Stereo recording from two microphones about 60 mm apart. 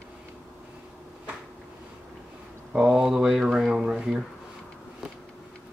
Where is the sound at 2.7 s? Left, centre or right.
Centre.